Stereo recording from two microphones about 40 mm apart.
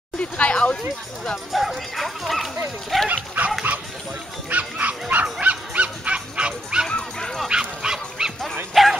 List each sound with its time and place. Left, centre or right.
0.2 s a sound: left
1.3 s speech: centre
3.4 s dog: right
4.5 s bow-wow: right
5.1 s dog: right
6.9 s dog: centre
7.4 s dog: centre
8.8 s bow-wow: centre